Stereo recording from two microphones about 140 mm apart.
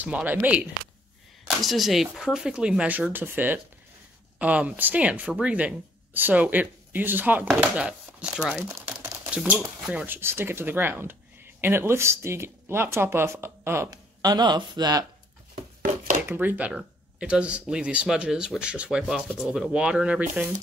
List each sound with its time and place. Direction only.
0.0 s speech: 10° right (ahead or behind)
1.4 s speech: centre (ahead or behind); by 15.0 s 30° right (ahead or behind)
16.2 s speech: 15° right (ahead or behind)